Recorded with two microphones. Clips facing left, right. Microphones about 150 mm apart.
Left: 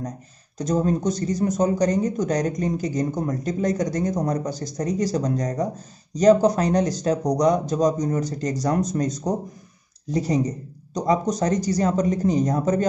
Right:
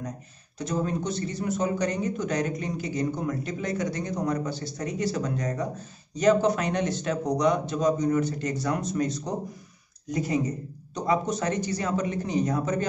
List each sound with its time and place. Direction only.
0.6 s speech: 40° left (ahead or behind)